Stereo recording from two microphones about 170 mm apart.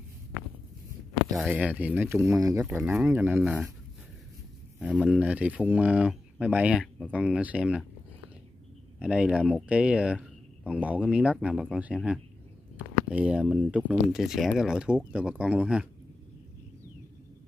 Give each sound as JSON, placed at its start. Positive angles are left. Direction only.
{"t": 1.3, "sound": "speech", "side_deg": -5}
{"t": 2.6, "sound": "speech", "side_deg": -5}
{"t": 4.7, "sound": "speech", "side_deg": -5}
{"t": 9.0, "sound": "speech", "side_deg": -5}